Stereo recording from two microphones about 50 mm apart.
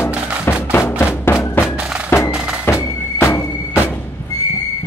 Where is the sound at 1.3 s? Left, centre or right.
Left.